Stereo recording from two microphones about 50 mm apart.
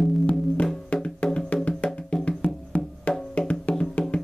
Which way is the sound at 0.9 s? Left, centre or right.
Left.